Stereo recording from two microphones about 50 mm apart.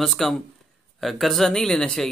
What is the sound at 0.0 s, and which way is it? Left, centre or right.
Speech, centre.